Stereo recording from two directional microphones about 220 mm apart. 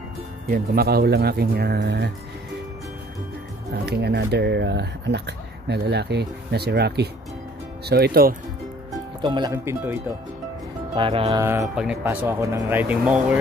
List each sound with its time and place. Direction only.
0.5 s speech: 45° right (ahead or behind)
3.7 s speech: 45° right (ahead or behind)
9.2 s speech: 20° right (ahead or behind)
11.0 s speech: 25° right (ahead or behind)
11.7 s speech: 5° right (ahead or behind)